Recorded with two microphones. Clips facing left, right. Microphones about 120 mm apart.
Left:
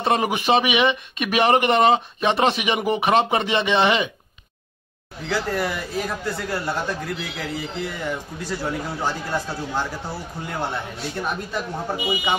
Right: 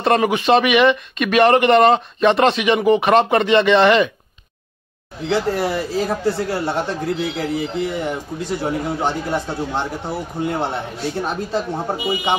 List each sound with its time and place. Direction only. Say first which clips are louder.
0.0 s speech: right 4 dB; 10° left (ahead or behind)
5.3 s speech: right 5 dB; 25° right (ahead or behind)